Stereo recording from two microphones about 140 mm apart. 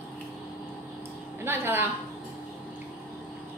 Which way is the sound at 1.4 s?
15° right (ahead or behind).